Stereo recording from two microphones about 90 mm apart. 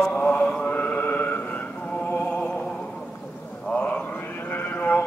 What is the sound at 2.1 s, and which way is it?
Music, 15° left (ahead or behind).